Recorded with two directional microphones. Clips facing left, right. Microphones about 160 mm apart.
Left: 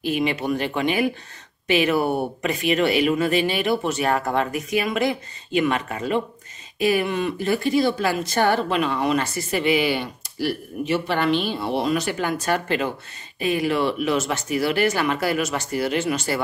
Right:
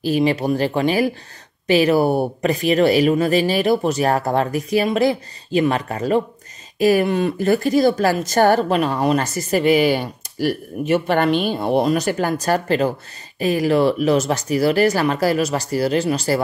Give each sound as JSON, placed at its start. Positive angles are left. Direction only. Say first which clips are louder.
{"t": 0.0, "sound": "speech", "louder": "right 5 dB", "side_deg": -35}